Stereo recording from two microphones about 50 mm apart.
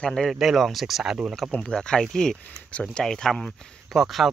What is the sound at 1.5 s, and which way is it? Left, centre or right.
Speech, left.